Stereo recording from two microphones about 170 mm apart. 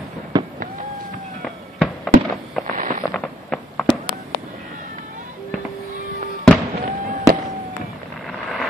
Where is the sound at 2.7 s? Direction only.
50° right (ahead or behind).